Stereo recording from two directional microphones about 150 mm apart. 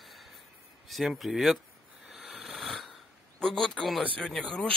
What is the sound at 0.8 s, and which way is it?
Speech, centre (ahead or behind).